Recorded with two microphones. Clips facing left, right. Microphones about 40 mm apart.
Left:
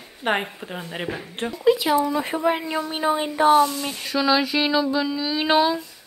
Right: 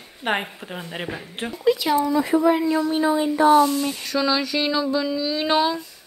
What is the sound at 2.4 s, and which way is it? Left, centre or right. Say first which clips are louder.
Speech: right 4 dB; left.